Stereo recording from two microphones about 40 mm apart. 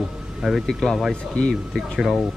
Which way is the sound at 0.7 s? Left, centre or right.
Centre.